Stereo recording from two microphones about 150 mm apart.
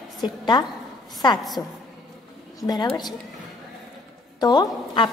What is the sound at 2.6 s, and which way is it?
Speech, 25° left (ahead or behind).